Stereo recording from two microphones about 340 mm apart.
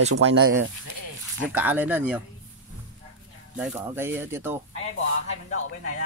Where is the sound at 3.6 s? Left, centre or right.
Centre.